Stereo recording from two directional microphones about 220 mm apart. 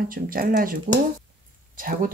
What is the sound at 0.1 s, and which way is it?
Speech, 40° right (ahead or behind).